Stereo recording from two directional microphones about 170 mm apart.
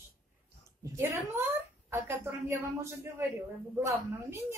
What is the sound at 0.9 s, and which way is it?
Speech, 15° right (ahead or behind).